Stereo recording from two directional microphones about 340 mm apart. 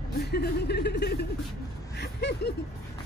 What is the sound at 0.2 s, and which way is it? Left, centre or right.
Speech, left.